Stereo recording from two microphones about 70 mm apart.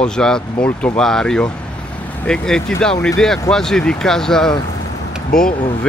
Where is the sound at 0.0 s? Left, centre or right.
Centre.